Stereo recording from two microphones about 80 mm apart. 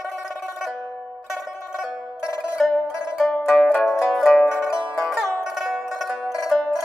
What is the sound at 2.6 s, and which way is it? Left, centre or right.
Music, centre.